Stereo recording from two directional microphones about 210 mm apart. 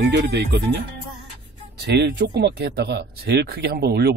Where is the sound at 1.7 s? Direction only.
55° right (ahead or behind).